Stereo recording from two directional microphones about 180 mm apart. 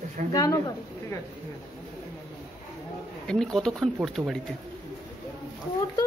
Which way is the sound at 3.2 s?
5° left (ahead or behind).